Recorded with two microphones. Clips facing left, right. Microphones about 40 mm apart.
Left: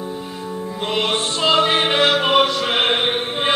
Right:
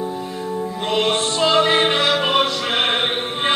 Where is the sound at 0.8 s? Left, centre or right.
Centre.